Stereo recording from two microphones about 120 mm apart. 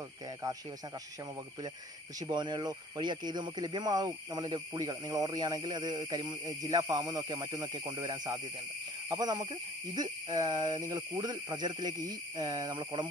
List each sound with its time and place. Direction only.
2.1 s speech: 35° right (ahead or behind)